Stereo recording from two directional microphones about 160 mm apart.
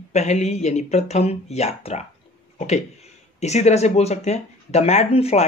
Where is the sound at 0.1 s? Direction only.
45° left (ahead or behind).